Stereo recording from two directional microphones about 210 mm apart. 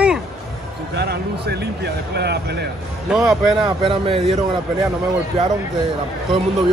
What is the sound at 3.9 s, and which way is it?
Speech, 25° right (ahead or behind).